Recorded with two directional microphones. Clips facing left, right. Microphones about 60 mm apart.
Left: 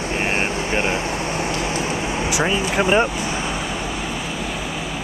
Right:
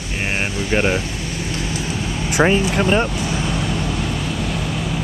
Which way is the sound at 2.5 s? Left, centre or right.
Centre.